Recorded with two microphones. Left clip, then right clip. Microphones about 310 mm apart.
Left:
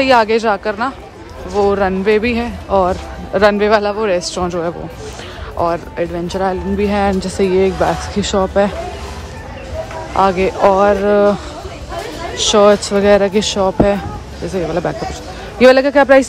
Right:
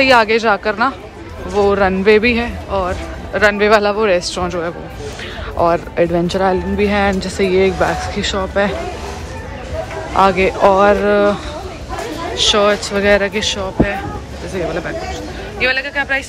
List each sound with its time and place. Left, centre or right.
0.0 s speech: centre
10.1 s speech: centre
15.6 s speech: centre